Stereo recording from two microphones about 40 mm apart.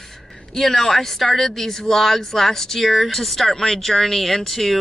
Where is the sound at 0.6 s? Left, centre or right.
Centre.